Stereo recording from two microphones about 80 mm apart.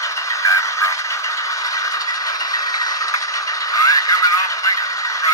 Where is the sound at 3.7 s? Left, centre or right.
Left.